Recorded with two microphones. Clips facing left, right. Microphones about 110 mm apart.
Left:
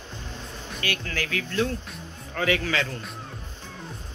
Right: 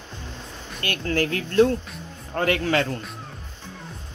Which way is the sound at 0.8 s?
45° right (ahead or behind).